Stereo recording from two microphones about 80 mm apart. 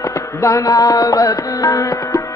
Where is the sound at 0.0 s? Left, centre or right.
Left.